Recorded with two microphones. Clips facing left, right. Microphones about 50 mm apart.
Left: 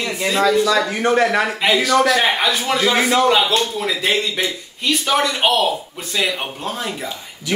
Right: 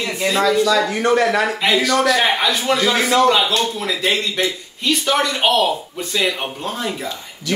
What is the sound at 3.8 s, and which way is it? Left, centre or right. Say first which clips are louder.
Speech: left 1 dB; centre.